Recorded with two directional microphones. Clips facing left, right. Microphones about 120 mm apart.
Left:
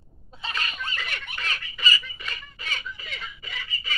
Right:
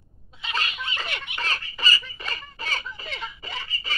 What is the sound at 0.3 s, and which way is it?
Snicker, 35° left (ahead or behind).